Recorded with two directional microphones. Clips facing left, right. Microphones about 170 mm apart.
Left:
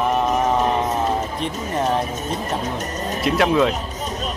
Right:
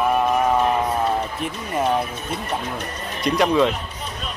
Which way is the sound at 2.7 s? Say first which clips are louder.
Left 4 dB; 45° left (ahead or behind).